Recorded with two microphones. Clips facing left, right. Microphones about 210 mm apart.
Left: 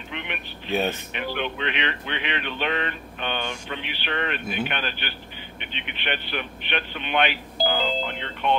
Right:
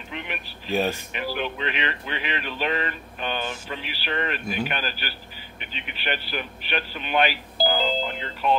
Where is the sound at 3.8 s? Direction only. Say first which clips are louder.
Right 1 dB; 40° right (ahead or behind).